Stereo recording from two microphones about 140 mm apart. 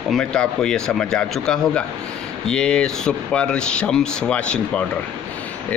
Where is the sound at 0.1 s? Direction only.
5° left (ahead or behind).